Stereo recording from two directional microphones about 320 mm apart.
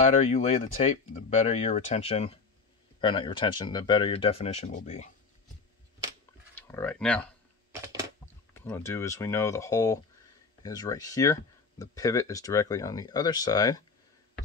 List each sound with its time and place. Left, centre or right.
0.1 s speech: left
6.5 s speech: centre
7.7 s typing: centre
8.5 s speech: centre